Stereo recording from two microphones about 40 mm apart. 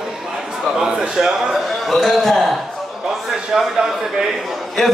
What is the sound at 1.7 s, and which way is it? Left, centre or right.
Speech, centre.